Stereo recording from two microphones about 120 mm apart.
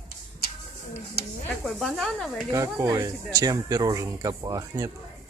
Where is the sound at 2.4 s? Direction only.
30° right (ahead or behind).